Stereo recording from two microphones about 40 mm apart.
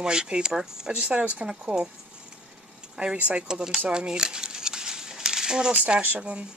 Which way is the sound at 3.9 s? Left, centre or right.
Centre.